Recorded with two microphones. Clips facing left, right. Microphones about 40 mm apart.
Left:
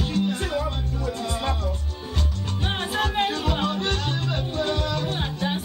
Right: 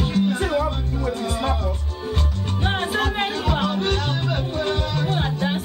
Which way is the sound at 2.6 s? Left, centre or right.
Centre.